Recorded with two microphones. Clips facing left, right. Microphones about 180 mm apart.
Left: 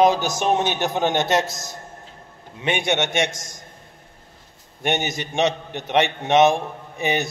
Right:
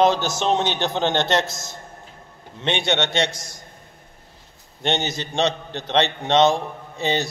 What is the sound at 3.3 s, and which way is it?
Speech, 45° left (ahead or behind).